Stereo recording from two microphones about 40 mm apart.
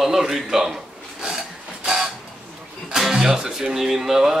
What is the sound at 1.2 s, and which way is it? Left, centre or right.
Rub, centre.